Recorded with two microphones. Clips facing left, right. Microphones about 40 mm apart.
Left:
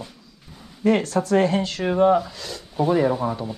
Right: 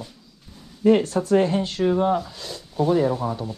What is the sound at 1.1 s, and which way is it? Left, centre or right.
Speech, left.